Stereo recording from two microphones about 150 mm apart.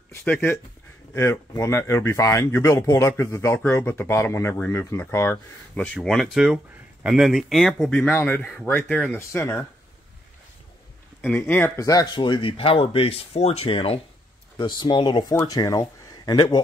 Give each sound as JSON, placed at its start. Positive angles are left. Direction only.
{"t": 0.1, "sound": "speech", "side_deg": 10}
{"t": 5.9, "sound": "speech", "side_deg": 0}
{"t": 8.0, "sound": "speech", "side_deg": 15}
{"t": 11.1, "sound": "speech", "side_deg": 10}